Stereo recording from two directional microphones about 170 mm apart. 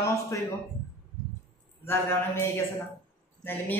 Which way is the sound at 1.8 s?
15° left (ahead or behind).